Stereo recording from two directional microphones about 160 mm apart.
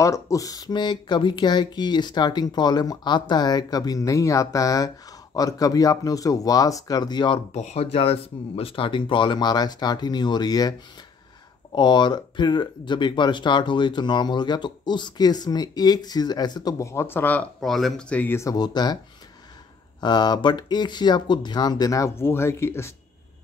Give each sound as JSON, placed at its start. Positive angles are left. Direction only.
{"t": 0.0, "sound": "speech", "side_deg": 20}
{"t": 7.5, "sound": "speech", "side_deg": 45}
{"t": 11.7, "sound": "speech", "side_deg": 30}
{"t": 20.0, "sound": "speech", "side_deg": 25}